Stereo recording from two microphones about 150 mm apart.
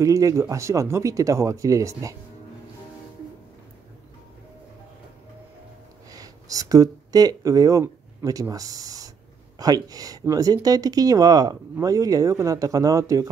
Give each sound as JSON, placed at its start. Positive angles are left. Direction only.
{"t": 0.0, "sound": "speech", "side_deg": -20}
{"t": 6.0, "sound": "speech", "side_deg": -25}